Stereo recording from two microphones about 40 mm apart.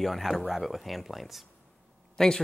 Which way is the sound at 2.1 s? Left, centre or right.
Centre.